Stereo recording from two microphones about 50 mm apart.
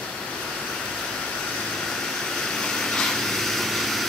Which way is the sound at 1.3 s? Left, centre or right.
Centre.